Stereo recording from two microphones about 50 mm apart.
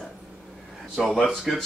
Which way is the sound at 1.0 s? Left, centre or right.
Centre.